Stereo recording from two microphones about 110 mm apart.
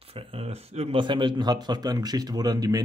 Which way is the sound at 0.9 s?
45° right (ahead or behind).